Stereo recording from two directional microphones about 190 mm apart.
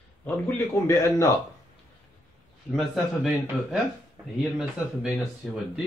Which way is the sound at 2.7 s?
Centre (ahead or behind).